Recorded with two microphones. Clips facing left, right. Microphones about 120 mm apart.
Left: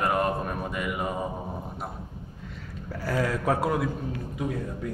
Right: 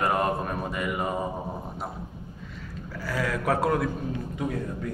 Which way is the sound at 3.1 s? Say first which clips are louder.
Left 1 dB; 30° left (ahead or behind).